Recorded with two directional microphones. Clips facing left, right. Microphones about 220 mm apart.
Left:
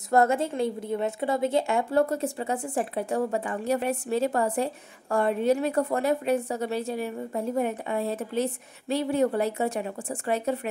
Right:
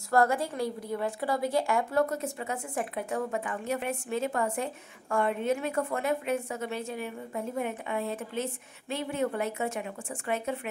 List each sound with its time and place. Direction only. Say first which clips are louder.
0.1 s a woman's voice: left 3 dB; 25° left (ahead or behind)